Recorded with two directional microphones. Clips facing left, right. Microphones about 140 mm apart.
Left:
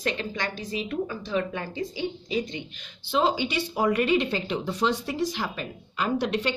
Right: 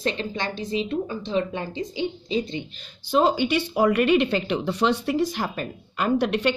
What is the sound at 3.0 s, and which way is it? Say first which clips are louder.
Speech: right 4 dB; 45° right (ahead or behind).